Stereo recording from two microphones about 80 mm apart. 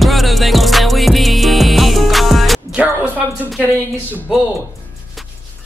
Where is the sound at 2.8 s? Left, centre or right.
Centre.